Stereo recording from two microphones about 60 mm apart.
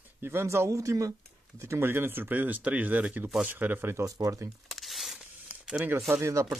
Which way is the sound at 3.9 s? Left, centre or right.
Right.